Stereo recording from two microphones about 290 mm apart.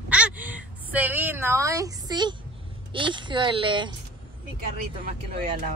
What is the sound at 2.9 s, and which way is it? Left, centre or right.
Speech, centre.